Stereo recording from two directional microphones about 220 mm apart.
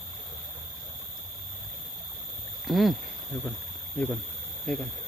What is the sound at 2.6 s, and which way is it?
Speech, centre (ahead or behind).